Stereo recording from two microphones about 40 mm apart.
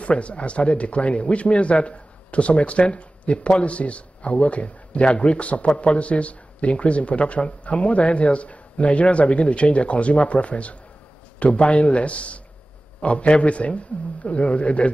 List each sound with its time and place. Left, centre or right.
0.0 s speech: left